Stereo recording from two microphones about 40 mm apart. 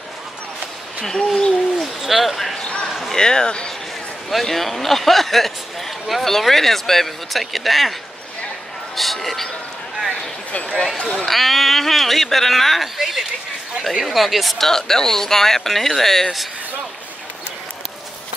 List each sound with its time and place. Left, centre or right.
1.0 s speech: centre
1.8 s a sound: centre
2.6 s a sound: left
2.9 s a sound: centre
3.2 s speech: centre
4.3 s a man's voice: centre
8.9 s a man's voice: centre
11.2 s a man's voice: centre
14.7 s speech: centre